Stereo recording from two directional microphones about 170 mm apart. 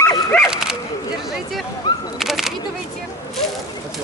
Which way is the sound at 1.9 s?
25° left (ahead or behind).